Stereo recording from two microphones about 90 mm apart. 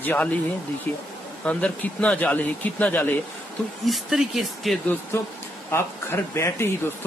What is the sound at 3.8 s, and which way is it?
Speech, centre (ahead or behind).